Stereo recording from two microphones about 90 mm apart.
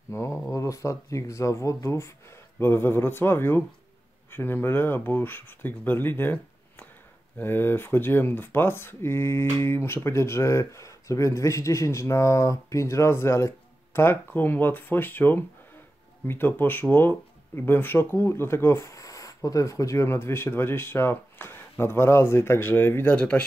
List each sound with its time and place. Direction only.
0.1 s speech: 30° left (ahead or behind); by 23.4 s 15° left (ahead or behind)